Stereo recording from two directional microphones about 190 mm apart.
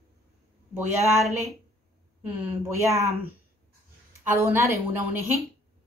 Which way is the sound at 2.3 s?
10° right (ahead or behind).